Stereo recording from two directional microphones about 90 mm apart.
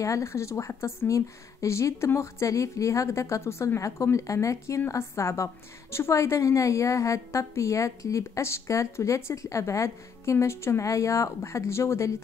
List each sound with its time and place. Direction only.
0.0 s speech: 35° left (ahead or behind)